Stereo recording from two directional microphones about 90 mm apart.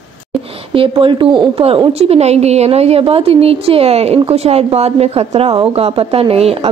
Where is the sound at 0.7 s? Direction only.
80° right.